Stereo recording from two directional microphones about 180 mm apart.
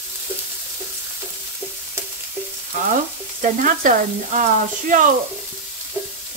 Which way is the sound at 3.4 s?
45° right (ahead or behind).